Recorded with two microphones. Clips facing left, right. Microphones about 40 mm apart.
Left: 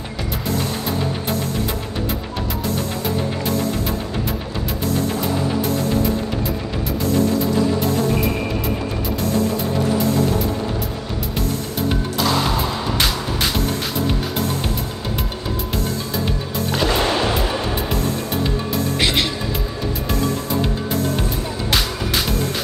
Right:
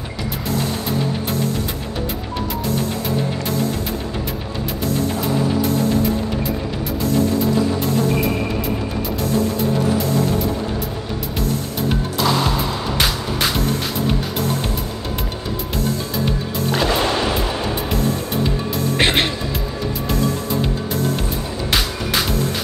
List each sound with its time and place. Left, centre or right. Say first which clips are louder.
0.5 s music: right 1 dB; centre
4.8 s music: right 1 dB; centre
9.2 s music: right 1 dB; centre
11.9 s music: right 1 dB; centre
16.5 s music: even; centre
18.9 s music: right 3 dB; right
21.6 s music: right 1 dB; centre